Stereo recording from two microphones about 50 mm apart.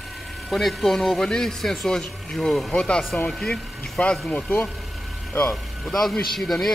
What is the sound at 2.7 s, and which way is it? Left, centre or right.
Speech, left.